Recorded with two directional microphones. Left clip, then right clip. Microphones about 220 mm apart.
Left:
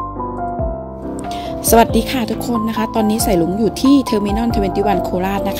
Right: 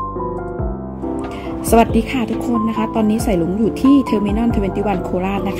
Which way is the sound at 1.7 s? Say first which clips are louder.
Left 2 dB; 15° left (ahead or behind).